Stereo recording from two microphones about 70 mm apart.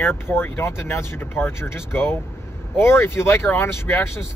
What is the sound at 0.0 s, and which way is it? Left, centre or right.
Speech, left.